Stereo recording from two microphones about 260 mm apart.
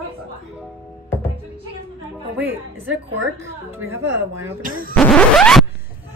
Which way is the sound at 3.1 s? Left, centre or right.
Right.